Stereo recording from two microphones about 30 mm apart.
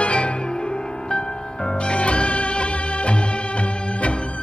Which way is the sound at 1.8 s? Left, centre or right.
Left.